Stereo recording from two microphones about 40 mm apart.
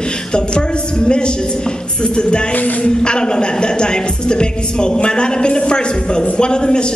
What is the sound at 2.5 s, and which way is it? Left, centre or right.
Music, left.